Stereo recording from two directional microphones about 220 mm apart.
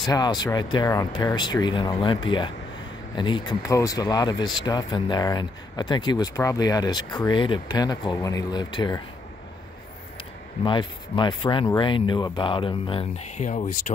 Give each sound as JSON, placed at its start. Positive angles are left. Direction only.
{"t": 0.1, "sound": "speech", "side_deg": 20}
{"t": 10.6, "sound": "speech", "side_deg": 20}